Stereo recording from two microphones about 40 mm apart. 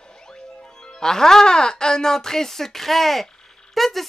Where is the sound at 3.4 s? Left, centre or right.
Centre.